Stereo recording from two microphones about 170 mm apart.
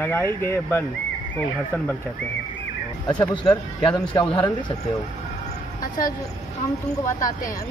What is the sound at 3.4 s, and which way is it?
A man's voice, 25° left (ahead or behind).